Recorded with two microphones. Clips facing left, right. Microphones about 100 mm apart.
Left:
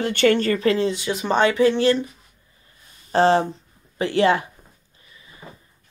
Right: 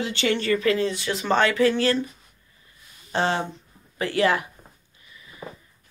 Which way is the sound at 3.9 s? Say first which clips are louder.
Left 3 dB; 25° left (ahead or behind).